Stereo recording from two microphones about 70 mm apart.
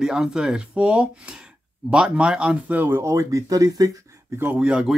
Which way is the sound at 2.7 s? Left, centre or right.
Right.